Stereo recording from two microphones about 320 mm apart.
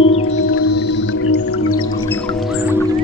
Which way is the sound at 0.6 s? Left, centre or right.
Left.